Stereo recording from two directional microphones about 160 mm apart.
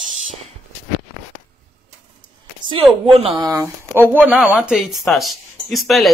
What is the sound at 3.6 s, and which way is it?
Speech, 15° right (ahead or behind).